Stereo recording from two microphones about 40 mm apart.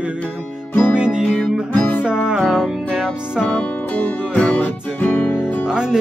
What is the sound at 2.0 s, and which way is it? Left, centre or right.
Music, right.